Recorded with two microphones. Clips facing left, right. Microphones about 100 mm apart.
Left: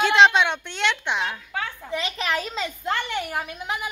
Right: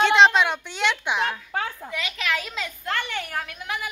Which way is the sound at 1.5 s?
45° right (ahead or behind).